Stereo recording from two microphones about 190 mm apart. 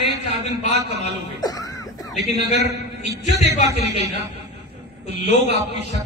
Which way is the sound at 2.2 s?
60° right (ahead or behind).